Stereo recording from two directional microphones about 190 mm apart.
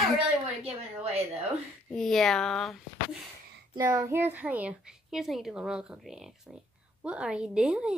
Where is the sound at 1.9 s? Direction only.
Centre (ahead or behind).